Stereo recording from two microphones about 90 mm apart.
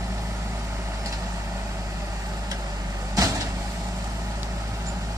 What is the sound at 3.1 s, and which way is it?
Vehicle, 40° right (ahead or behind).